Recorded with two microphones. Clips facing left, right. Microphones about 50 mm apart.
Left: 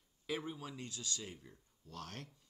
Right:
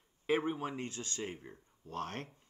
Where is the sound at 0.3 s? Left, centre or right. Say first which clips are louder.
Right 9 dB; right.